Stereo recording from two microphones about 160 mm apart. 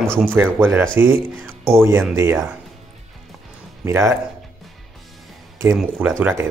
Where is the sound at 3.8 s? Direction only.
15° right (ahead or behind).